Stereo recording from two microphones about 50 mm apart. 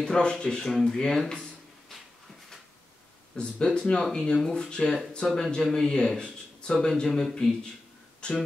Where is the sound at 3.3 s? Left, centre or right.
Centre.